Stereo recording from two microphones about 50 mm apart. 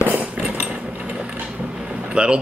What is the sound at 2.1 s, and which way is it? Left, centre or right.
Speech, right.